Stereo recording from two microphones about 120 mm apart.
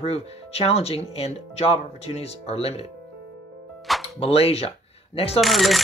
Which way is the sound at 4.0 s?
55° left (ahead or behind).